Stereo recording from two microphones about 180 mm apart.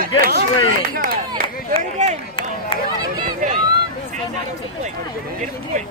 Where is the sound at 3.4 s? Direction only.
45° right (ahead or behind).